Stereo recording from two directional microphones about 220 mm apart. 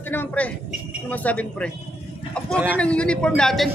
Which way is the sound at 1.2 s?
5° left (ahead or behind).